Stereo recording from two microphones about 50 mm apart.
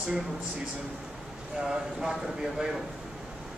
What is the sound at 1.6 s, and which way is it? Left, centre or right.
Speech, centre.